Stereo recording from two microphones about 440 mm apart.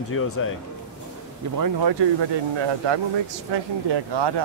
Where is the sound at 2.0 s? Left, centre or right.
Right.